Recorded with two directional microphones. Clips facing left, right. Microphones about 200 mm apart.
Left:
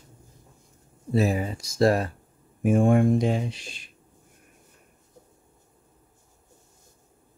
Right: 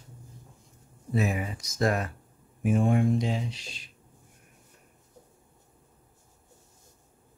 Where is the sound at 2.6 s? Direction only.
50° left (ahead or behind).